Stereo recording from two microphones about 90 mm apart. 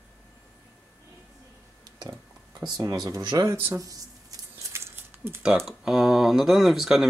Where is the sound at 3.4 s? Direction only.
30° right (ahead or behind).